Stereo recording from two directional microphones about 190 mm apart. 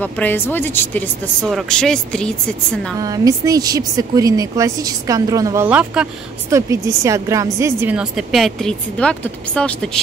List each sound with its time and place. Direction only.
0.0 s speech: 10° left (ahead or behind)
3.0 s a woman's voice: 20° right (ahead or behind); by 9.8 s 5° left (ahead or behind)